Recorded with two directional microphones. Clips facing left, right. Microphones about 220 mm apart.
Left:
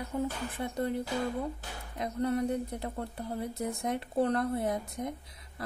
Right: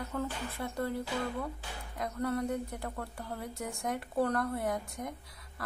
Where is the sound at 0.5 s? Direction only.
15° left (ahead or behind).